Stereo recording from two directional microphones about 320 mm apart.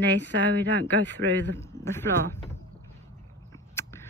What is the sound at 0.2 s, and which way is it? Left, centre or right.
Speech, left.